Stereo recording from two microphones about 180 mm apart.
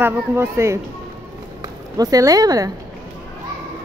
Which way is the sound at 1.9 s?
20° right (ahead or behind).